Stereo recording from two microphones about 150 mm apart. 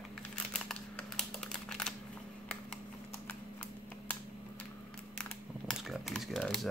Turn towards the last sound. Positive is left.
turn(degrees=0)  # may be behind; listen again after turning